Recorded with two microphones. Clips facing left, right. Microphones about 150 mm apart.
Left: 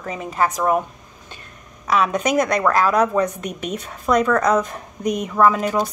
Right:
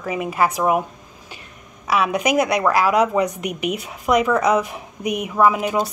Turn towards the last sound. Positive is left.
turn(degrees=-10)  # may be behind; listen again after turning